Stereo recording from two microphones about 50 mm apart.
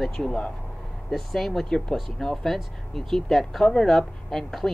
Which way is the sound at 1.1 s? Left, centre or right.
Centre.